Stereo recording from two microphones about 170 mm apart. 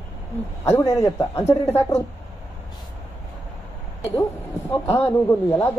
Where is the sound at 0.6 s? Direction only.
15° left (ahead or behind).